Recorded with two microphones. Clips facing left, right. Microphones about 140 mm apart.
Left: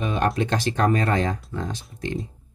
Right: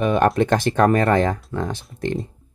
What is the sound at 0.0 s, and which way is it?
Speech, 55° right (ahead or behind).